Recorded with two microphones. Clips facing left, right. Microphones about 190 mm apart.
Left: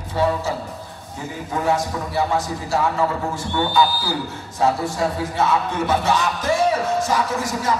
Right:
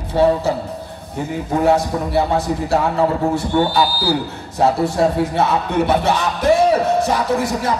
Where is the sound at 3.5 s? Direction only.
35° right (ahead or behind).